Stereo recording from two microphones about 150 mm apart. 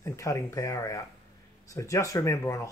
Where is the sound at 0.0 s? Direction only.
20° left (ahead or behind).